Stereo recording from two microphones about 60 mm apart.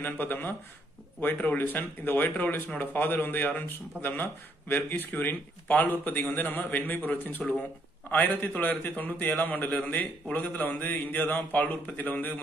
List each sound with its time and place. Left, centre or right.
0.0 s a man's voice: left